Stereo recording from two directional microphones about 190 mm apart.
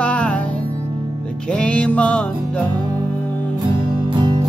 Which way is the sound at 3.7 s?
25° right (ahead or behind).